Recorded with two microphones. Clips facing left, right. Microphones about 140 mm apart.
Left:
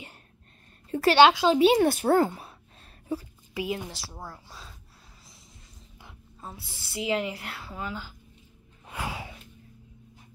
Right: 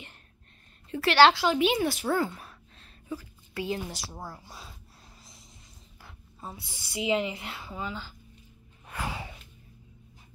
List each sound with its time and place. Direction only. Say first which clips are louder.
1.1 s a woman's voice: left 1 dB; 15° left (ahead or behind)
1.5 s a woman's voice: left 5 dB; 35° left (ahead or behind)
1.8 s a woman's voice: left 6 dB; 50° left (ahead or behind)
3.5 s a woman's voice: left 1 dB; 10° left (ahead or behind)
3.9 s a woman's voice: right 1 dB; 15° right (ahead or behind)
6.4 s a woman's voice: right 1 dB; centre (ahead or behind)
8.9 s snort: left 1 dB; 5° left (ahead or behind)